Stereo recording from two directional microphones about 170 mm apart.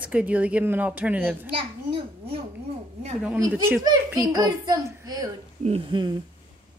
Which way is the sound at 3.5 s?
10° right (ahead or behind).